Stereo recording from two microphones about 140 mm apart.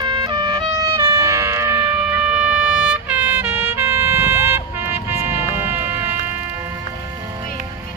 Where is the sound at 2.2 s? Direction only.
10° right (ahead or behind).